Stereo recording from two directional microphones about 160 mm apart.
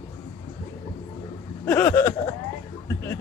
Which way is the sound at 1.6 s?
15° left (ahead or behind).